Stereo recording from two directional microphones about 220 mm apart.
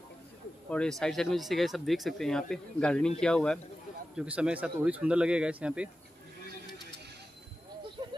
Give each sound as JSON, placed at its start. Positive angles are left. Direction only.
{"t": 0.7, "sound": "speech", "side_deg": 5}